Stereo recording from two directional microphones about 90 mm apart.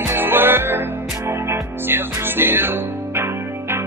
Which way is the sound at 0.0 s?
25° right (ahead or behind).